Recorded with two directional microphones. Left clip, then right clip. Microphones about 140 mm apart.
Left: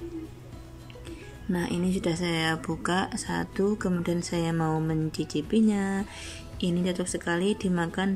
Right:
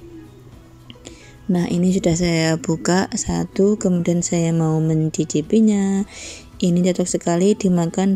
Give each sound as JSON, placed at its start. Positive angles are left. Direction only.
{"t": 1.0, "sound": "speech", "side_deg": -30}